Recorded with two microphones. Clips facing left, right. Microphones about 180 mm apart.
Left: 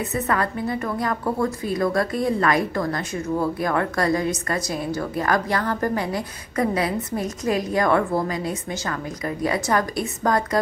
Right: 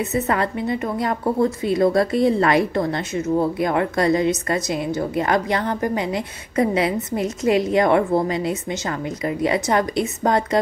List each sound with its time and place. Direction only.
0.1 s a woman's voice: 25° right (ahead or behind)